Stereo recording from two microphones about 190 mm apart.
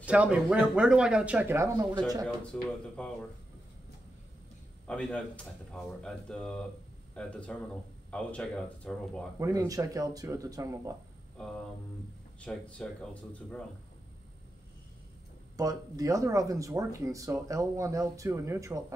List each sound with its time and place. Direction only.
0.0 s speech: 5° right (ahead or behind)
2.2 s speech: 5° left (ahead or behind)
4.8 s speech: 5° left (ahead or behind)
9.4 s speech: 15° right (ahead or behind)
11.4 s speech: 5° left (ahead or behind)
15.5 s speech: 20° right (ahead or behind)